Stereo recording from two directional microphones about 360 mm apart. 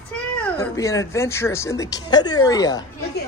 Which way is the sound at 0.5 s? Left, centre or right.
Centre.